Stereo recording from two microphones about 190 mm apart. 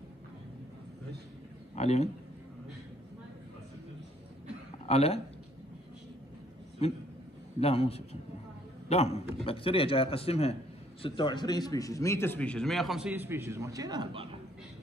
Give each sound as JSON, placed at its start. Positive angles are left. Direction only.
{"t": 1.8, "sound": "a man's voice", "side_deg": 35}
{"t": 4.8, "sound": "a man's voice", "side_deg": 30}
{"t": 6.8, "sound": "a man's voice", "side_deg": 30}